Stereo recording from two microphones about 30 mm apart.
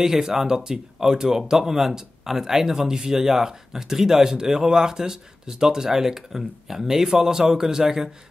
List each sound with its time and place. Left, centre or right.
0.0 s speech: centre